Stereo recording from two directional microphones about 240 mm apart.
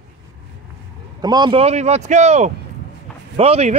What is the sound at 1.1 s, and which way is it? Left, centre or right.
Speech, centre.